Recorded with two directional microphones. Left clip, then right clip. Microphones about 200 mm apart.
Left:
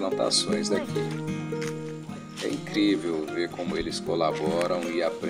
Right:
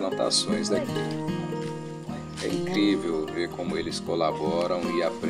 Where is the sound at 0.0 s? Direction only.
Centre (ahead or behind).